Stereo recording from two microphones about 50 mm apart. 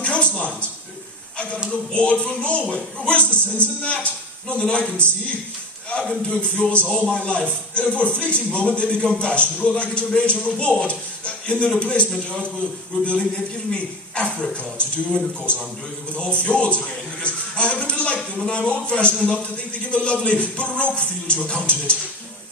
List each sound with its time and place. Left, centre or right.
0.0 s a sound: left
1.7 s speech: left
6.2 s speech: left